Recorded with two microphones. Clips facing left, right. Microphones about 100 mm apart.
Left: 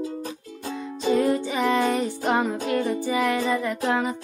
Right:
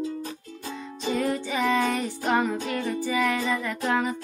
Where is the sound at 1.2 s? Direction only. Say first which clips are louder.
Left 4 dB; 15° left (ahead or behind).